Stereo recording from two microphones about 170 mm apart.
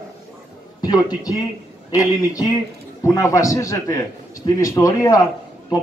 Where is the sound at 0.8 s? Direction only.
25° left (ahead or behind).